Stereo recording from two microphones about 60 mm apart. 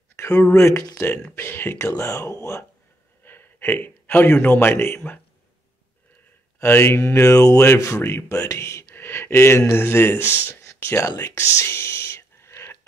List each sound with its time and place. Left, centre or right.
0.1 s speech: left
3.3 s speech: left
6.6 s speech: left
7.2 s a sound: left
7.6 s speech: left
8.9 s speech: left
10.5 s a sound: left
11.5 s whispering: left